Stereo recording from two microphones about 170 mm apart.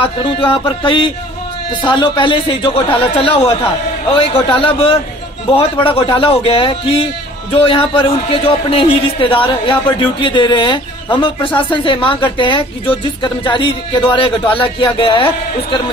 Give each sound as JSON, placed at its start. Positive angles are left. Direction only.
{"t": 0.0, "sound": "a man's voice", "side_deg": 30}